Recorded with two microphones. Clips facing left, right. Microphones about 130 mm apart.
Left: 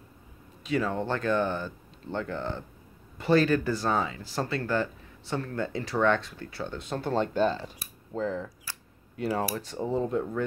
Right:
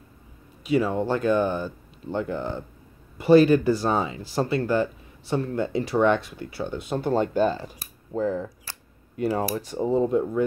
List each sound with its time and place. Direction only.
0.7 s speech: 10° right (ahead or behind)
9.8 s speech: 15° right (ahead or behind)